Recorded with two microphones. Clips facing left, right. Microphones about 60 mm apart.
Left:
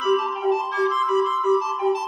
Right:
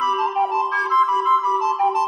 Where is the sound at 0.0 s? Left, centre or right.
Right.